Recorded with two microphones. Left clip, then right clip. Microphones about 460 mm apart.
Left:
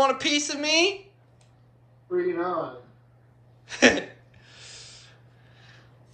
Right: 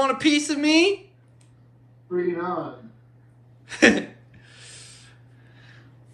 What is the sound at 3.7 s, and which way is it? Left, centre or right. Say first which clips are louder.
Gasp: right 2 dB; centre.